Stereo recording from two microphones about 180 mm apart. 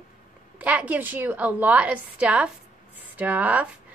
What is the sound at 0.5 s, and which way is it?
A woman's voice, 10° right (ahead or behind).